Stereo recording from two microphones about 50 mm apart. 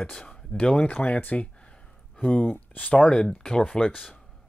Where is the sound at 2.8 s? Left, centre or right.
Left.